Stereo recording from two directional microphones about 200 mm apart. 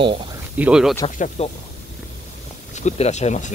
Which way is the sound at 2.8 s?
35° left (ahead or behind).